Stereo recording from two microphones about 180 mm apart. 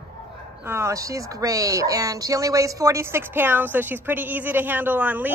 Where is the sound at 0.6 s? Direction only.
15° right (ahead or behind).